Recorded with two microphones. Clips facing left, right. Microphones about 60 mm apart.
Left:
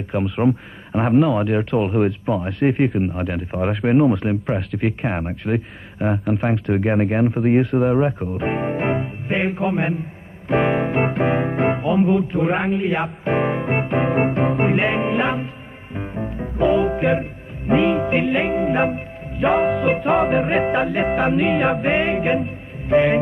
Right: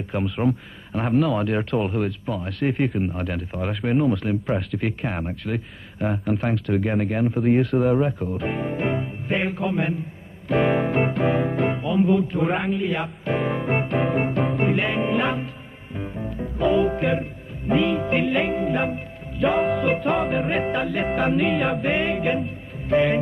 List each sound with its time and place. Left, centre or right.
0.1 s speech: centre
2.0 s speech: left
2.9 s speech: centre; by 7.3 s left
7.5 s speech: centre
7.9 s music: left
12.4 s speech: centre
12.7 s speech: left
13.5 s speech: centre
14.6 s music: left
19.8 s speech: centre
20.2 s speech: centre
20.6 s speech: left
21.4 s speech: centre
21.8 s music: left